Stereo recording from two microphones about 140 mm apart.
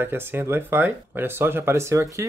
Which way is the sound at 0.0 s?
15° right (ahead or behind).